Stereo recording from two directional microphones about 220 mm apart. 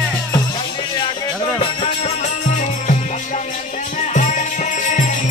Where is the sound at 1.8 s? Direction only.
30° left (ahead or behind).